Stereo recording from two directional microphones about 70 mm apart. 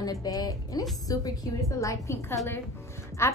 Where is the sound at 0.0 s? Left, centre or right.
Left.